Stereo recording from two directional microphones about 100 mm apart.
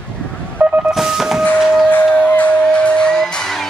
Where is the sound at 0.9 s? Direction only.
5° right (ahead or behind).